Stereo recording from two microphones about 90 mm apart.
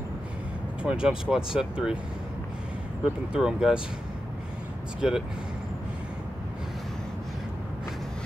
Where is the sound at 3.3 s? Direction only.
10° right (ahead or behind).